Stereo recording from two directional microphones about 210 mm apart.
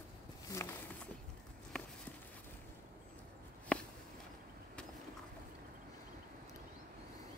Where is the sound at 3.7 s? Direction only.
5° left (ahead or behind).